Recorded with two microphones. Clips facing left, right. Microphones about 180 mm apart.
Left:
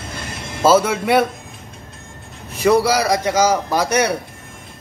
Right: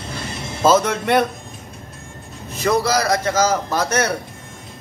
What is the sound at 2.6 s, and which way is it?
A man's voice, 10° left (ahead or behind).